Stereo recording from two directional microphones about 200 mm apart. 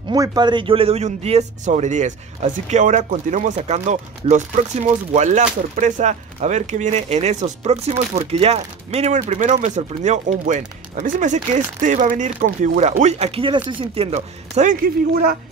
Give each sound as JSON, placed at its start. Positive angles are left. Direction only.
{"t": 0.1, "sound": "speech", "side_deg": -20}